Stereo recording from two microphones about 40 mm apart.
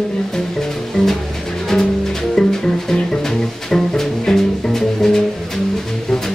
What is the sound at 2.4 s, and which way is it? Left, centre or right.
Music, centre.